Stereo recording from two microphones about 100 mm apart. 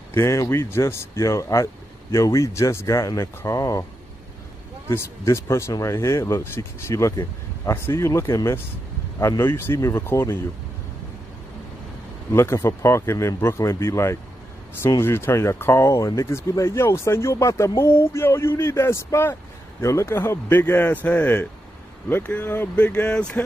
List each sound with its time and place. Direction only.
0.1 s speech: 30° left (ahead or behind)
4.8 s speech: 25° left (ahead or behind)
9.4 s speech: 25° left (ahead or behind)
12.3 s speech: 30° left (ahead or behind); by 23.4 s 10° left (ahead or behind)